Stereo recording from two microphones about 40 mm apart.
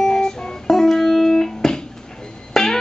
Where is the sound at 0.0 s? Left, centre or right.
Centre.